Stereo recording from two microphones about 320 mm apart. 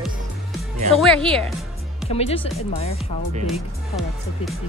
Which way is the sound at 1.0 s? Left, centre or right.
Centre.